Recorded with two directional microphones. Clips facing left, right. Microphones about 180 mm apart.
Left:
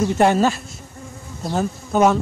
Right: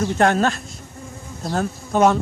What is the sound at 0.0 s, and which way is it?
Speech, 5° left (ahead or behind).